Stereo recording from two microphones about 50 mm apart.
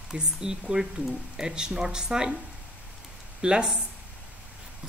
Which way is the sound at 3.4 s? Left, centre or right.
Centre.